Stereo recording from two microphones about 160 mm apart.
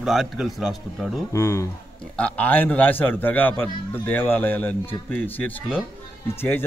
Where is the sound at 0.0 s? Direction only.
Centre (ahead or behind).